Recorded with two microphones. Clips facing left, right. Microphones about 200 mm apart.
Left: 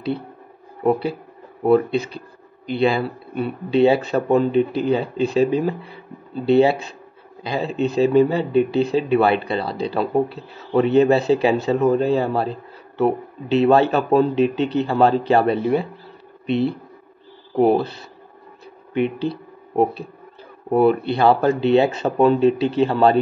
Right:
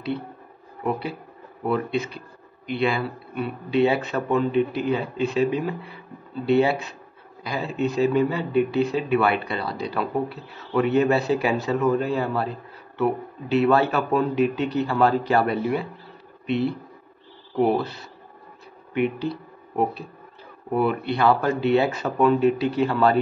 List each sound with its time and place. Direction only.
0.8 s a man's voice: 35° left (ahead or behind)
18.9 s a man's voice: 30° left (ahead or behind)